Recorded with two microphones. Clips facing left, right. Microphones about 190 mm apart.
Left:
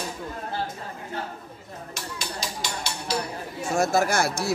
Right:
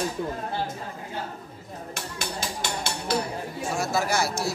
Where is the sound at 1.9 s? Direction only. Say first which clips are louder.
Right 1 dB; 55° right (ahead or behind).